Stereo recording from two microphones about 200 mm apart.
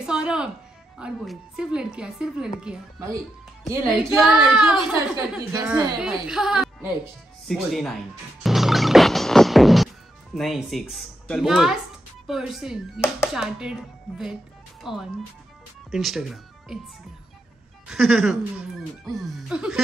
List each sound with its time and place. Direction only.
0.0 s music: 5° right (ahead or behind)
0.9 s speech: centre (ahead or behind)
3.7 s speech: 5° right (ahead or behind)
5.5 s a woman's voice: 15° right (ahead or behind)
5.9 s speech: 5° right (ahead or behind)
7.4 s music: centre (ahead or behind)
10.3 s speech: centre (ahead or behind)
17.8 s speech: centre (ahead or behind)